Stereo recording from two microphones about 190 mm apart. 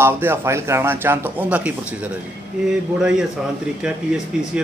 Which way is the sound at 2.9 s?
5° right (ahead or behind).